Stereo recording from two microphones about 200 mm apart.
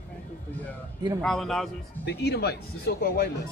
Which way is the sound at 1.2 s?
Centre (ahead or behind).